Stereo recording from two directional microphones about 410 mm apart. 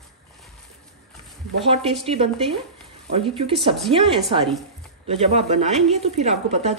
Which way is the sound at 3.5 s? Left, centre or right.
Centre.